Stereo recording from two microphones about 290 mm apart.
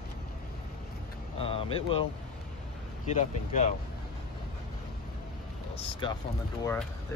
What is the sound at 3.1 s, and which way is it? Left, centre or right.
Speech, left.